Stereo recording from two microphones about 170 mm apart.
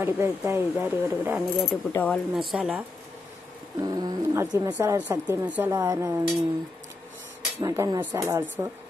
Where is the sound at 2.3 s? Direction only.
5° right (ahead or behind).